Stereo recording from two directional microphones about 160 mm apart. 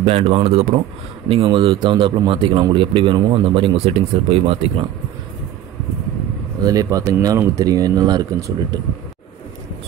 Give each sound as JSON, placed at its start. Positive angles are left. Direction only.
{"t": 0.0, "sound": "speech", "side_deg": -35}
{"t": 6.6, "sound": "speech", "side_deg": -20}